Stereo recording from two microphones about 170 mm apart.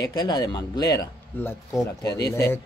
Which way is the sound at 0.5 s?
25° left (ahead or behind).